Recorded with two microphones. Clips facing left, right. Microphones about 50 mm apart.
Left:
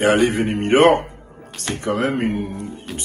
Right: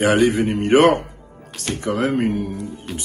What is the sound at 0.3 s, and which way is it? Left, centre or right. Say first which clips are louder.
A man's voice: right 1 dB; left.